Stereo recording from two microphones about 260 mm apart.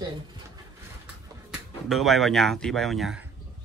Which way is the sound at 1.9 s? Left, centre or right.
Centre.